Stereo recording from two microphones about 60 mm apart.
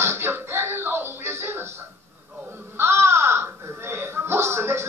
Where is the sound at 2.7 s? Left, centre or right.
Right.